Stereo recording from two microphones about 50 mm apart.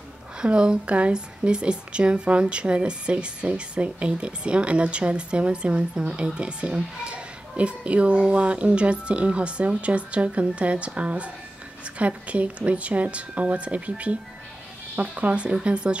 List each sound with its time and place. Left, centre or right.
0.4 s speech: centre